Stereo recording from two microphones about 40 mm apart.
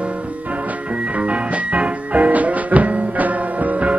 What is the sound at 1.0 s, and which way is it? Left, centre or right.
Music, right.